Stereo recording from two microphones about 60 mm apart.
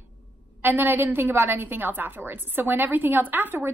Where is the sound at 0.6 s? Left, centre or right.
Right.